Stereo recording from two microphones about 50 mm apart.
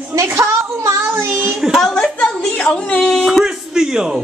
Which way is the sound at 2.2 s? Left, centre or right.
Left.